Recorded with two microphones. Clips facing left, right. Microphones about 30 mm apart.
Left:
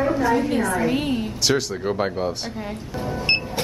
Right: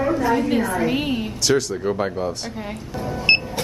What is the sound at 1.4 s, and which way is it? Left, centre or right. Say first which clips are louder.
Speech: right 4 dB; centre.